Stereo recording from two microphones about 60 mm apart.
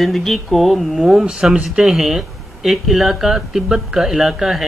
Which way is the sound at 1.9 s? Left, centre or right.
Centre.